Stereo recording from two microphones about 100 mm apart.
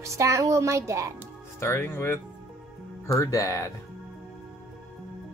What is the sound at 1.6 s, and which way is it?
Speech, 25° left (ahead or behind).